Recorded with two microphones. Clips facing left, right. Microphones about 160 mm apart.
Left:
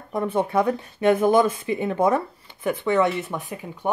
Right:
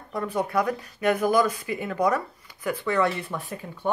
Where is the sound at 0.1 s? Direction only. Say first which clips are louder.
Left 4 dB; 25° left (ahead or behind).